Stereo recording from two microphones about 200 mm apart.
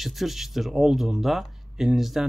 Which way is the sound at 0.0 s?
Centre (ahead or behind).